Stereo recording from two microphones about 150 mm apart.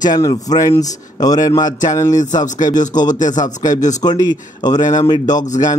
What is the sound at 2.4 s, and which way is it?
Speech, 55° left (ahead or behind).